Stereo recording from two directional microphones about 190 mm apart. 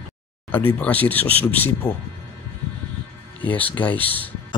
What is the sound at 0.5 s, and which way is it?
Speech, 10° left (ahead or behind).